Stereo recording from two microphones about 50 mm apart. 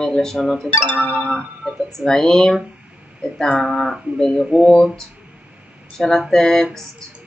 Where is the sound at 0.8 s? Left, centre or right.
Left.